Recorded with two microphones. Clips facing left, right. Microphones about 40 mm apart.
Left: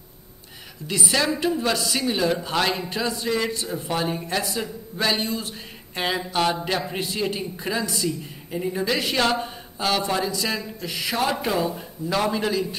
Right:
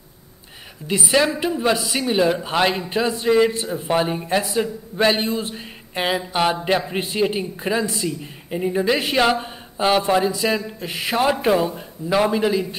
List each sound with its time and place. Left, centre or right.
0.8 s a man's voice: right